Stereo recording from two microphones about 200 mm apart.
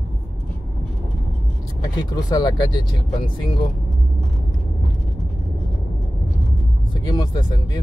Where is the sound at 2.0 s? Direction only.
20° left (ahead or behind).